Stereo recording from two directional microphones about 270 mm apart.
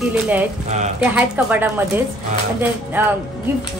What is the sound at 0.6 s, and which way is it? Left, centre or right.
Speech, right.